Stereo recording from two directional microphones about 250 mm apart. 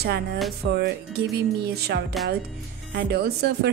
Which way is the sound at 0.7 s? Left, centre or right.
Right.